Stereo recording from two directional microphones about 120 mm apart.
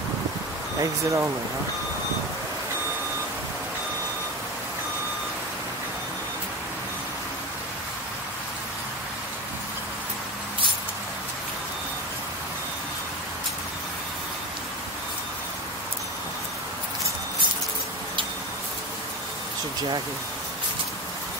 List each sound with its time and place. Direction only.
0.7 s speech: 25° right (ahead or behind)